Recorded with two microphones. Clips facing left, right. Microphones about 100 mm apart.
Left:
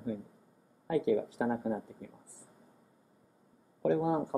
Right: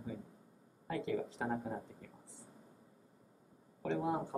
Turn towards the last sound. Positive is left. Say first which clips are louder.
# left 7 dB
turn(degrees=5)  # may be behind; listen again after turning